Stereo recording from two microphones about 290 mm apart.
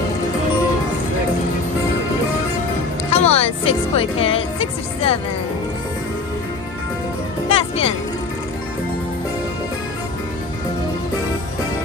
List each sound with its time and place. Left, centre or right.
3.1 s music: left
7.4 s music: centre